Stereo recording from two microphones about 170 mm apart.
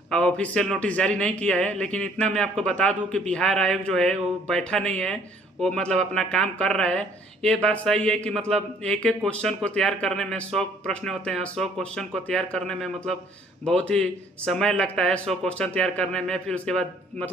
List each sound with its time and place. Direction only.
0.1 s a man's voice: 5° left (ahead or behind)